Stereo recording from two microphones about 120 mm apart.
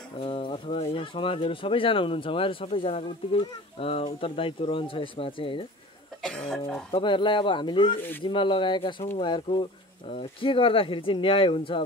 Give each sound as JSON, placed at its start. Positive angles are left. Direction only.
{"t": 0.2, "sound": "speech", "side_deg": 45}
{"t": 6.2, "sound": "speech", "side_deg": 5}
{"t": 6.9, "sound": "speech", "side_deg": 45}